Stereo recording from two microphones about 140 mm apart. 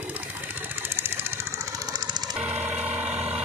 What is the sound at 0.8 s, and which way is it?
Sewing machine, 15° right (ahead or behind).